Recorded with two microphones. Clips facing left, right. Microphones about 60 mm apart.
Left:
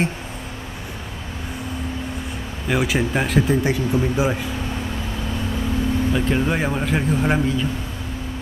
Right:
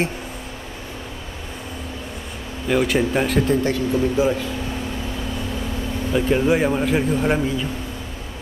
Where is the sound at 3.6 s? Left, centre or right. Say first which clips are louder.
Right 1 dB; centre.